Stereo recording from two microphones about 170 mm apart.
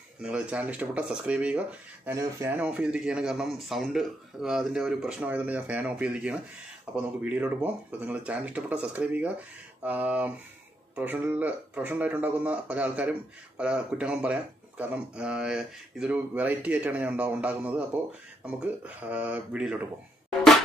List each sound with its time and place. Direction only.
0.2 s a man's voice: 5° right (ahead or behind)